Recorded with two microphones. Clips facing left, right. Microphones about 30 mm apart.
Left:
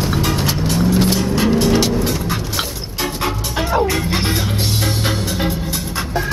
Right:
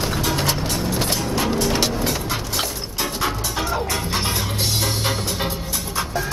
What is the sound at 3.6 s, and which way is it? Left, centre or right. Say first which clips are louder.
Music: left 8 dB; left.